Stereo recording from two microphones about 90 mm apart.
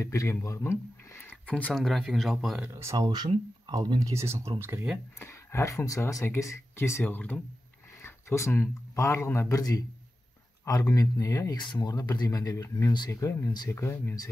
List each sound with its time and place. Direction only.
0.0 s speech: 35° left (ahead or behind)
0.7 s a sound: 30° left (ahead or behind)
1.3 s a sound: 15° left (ahead or behind)
1.7 s speech: 5° left (ahead or behind)
2.7 s speech: 35° right (ahead or behind)
3.1 s speech: 50° right (ahead or behind)
4.1 s speech: 30° right (ahead or behind)
5.2 s speech: 30° left (ahead or behind)
9.6 s speech: 40° left (ahead or behind)